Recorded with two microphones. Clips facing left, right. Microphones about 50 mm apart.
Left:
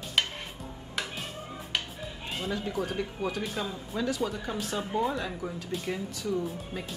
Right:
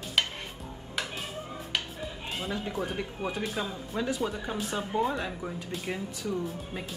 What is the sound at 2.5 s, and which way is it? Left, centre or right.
Speech, centre.